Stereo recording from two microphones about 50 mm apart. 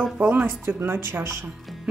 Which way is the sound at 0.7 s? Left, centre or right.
Right.